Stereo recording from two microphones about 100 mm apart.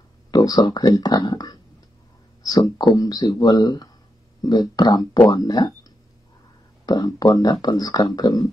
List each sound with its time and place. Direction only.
0.3 s speech: 40° left (ahead or behind)